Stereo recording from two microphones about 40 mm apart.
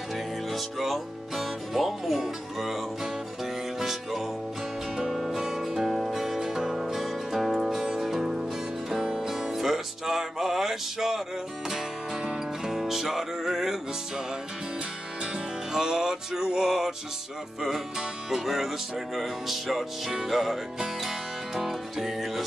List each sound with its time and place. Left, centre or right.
0.1 s music: centre
5.9 s music: centre
6.1 s music: centre
7.8 s music: centre
15.7 s music: centre